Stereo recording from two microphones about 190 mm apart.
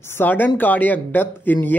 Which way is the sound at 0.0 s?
10° left (ahead or behind).